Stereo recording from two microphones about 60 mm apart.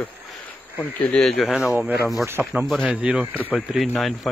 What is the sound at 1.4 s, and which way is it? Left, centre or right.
Speech, centre.